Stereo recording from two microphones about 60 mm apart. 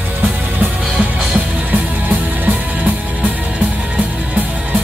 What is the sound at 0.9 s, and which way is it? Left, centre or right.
Music, right.